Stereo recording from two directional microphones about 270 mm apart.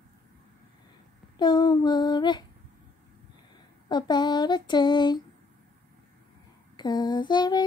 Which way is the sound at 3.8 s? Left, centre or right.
Centre.